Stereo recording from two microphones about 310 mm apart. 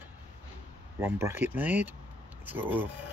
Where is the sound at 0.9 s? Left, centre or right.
Centre.